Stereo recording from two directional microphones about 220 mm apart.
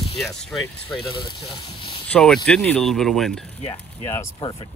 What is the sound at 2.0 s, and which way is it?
Speech, 5° left (ahead or behind).